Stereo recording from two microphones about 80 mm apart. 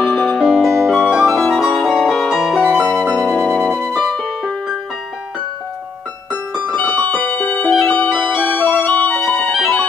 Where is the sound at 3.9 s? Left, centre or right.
Centre.